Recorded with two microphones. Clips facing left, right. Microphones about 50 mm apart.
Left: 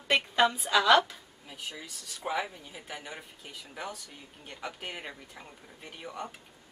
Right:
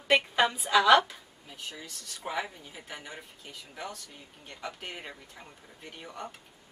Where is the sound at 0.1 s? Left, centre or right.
Centre.